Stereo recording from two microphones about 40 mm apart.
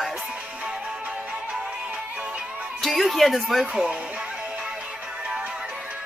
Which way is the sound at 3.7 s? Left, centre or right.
Right.